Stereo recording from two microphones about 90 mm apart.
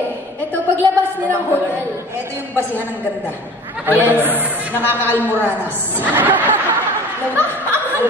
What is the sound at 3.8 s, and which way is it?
A woman's voice, 20° right (ahead or behind).